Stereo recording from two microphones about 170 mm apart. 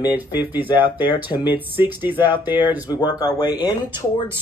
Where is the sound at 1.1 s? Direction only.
30° left (ahead or behind).